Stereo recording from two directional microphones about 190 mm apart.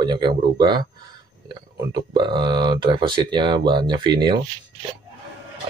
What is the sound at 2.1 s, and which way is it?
Speech, 25° right (ahead or behind).